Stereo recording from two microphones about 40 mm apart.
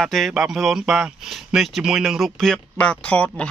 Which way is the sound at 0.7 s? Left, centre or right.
Centre.